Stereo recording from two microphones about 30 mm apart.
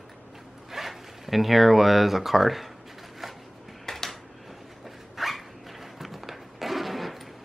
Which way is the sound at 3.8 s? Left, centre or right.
Centre.